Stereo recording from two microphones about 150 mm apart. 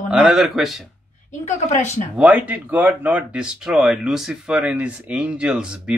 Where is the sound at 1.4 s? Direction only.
50° left (ahead or behind).